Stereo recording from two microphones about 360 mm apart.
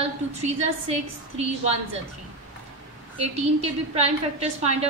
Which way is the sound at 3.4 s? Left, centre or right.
Centre.